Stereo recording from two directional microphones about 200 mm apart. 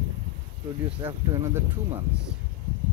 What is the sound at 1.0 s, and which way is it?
Speech, 20° right (ahead or behind).